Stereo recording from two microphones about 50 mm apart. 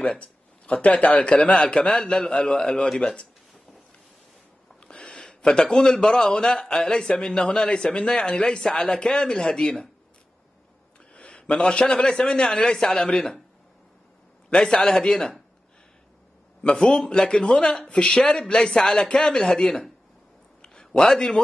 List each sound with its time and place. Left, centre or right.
0.0 s speech: left
4.7 s a man's voice: centre
11.1 s a sound: left
11.6 s speech: centre
14.5 s speech: centre
16.6 s speech: centre
20.6 s a sound: centre